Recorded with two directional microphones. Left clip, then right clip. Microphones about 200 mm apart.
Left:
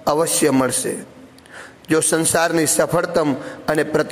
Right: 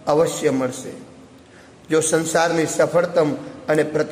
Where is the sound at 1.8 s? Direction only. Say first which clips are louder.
Left 1 dB; 25° left (ahead or behind).